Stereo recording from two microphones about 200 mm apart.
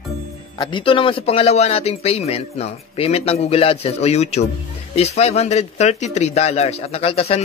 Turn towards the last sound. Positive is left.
turn(degrees=30)  # may be behind; listen again after turning